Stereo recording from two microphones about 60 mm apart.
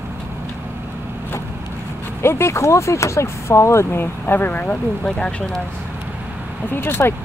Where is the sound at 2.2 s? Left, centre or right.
Left.